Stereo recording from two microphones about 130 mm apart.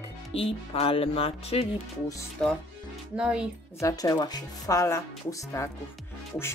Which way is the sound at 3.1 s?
5° right (ahead or behind).